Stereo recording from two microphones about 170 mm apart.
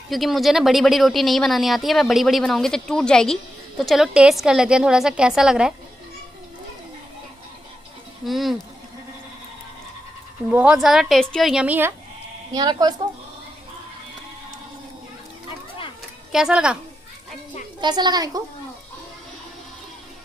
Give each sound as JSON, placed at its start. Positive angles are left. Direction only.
{"t": 0.1, "sound": "speech", "side_deg": 0}
{"t": 8.3, "sound": "speech", "side_deg": 0}
{"t": 10.5, "sound": "speech", "side_deg": -5}
{"t": 12.5, "sound": "a woman's voice", "side_deg": -25}
{"t": 16.3, "sound": "speech", "side_deg": -5}
{"t": 17.7, "sound": "a woman's voice", "side_deg": -25}